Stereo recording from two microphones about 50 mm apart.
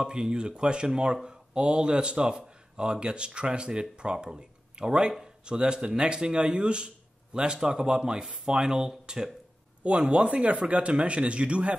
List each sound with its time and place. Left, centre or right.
0.0 s speech: centre
9.8 s speech: right